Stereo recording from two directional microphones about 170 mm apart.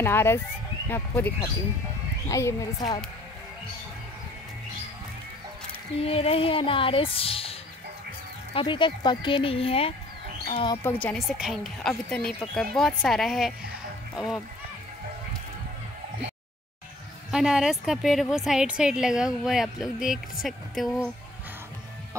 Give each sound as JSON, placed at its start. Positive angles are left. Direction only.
{"t": 0.0, "sound": "speech", "side_deg": 15}
{"t": 5.9, "sound": "speech", "side_deg": 35}
{"t": 8.5, "sound": "speech", "side_deg": 30}
{"t": 10.8, "sound": "a woman's voice", "side_deg": 10}
{"t": 17.3, "sound": "a woman's voice", "side_deg": -5}